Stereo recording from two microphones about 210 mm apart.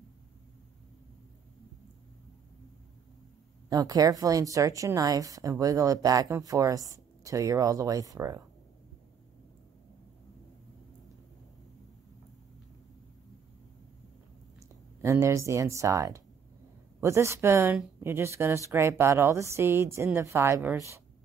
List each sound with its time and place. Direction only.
3.6 s speech: 20° right (ahead or behind)
15.0 s speech: 15° right (ahead or behind)